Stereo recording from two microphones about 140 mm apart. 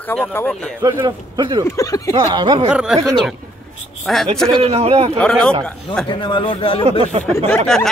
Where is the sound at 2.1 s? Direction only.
30° right (ahead or behind).